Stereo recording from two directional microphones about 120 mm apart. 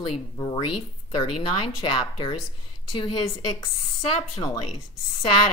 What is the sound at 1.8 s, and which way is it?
Speech, 45° left (ahead or behind).